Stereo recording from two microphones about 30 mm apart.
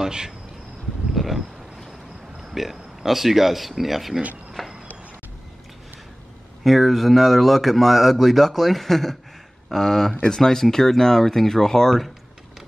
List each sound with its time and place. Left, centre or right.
0.0 s speech: right
1.1 s a sound: centre
2.5 s speech: centre
6.6 s speech: centre